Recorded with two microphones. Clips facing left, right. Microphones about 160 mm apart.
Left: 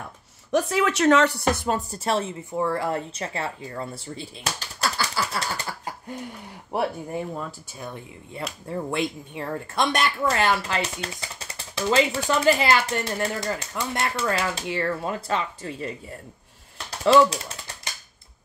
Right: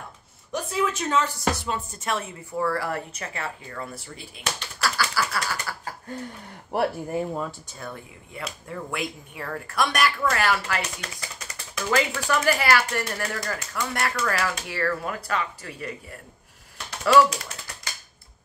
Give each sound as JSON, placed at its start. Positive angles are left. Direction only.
{"t": 0.5, "sound": "speech", "side_deg": 75}
{"t": 6.7, "sound": "speech", "side_deg": 0}
{"t": 8.4, "sound": "speech", "side_deg": 30}